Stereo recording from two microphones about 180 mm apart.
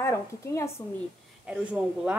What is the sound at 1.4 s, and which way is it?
Speech, 5° right (ahead or behind).